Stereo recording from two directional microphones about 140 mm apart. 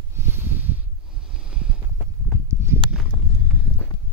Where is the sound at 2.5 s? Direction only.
15° right (ahead or behind).